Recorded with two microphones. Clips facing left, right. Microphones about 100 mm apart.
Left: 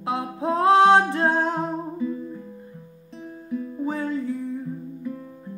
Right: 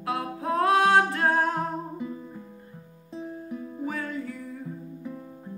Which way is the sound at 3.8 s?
25° left (ahead or behind).